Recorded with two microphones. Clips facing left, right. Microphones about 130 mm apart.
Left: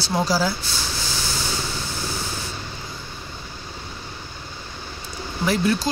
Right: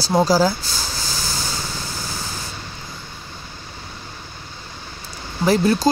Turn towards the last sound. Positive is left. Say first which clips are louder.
# right 4 dB
turn(degrees=-40)  # may be behind; listen again after turning